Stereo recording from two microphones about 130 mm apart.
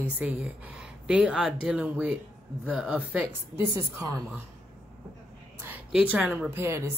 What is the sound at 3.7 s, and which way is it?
Speech, 25° right (ahead or behind).